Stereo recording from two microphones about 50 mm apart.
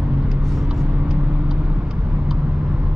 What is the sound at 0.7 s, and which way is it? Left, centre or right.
Vehicle, centre.